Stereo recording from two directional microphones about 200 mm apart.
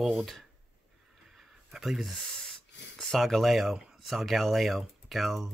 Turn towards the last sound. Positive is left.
turn(degrees=0)  # may be behind; listen again after turning